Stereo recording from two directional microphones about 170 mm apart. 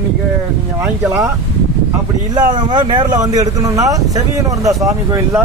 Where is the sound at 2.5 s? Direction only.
25° right (ahead or behind).